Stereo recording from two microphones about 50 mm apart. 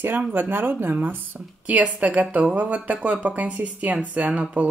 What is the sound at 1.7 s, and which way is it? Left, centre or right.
Speech, right.